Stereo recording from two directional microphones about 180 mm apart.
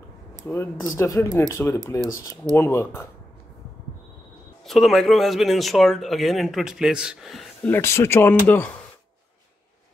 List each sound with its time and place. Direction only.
0.5 s speech: 15° left (ahead or behind)
4.6 s speech: centre (ahead or behind)
7.7 s speech: 15° left (ahead or behind)